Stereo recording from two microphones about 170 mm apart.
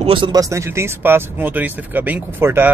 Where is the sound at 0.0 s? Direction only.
30° right (ahead or behind).